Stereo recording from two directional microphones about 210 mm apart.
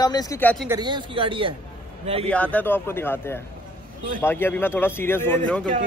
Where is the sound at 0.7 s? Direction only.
20° right (ahead or behind).